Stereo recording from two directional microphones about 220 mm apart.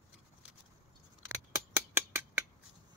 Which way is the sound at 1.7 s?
10° right (ahead or behind).